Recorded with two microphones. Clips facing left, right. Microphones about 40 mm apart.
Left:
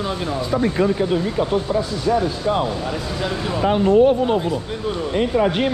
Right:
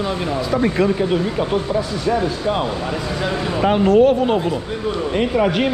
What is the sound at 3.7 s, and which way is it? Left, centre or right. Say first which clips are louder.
Speech: right 1 dB; right.